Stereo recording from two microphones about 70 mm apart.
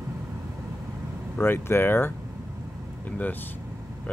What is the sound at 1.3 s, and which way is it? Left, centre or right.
Speech, left.